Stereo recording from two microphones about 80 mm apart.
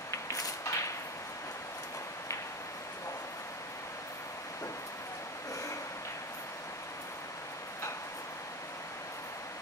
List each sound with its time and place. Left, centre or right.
0.1 s creak: left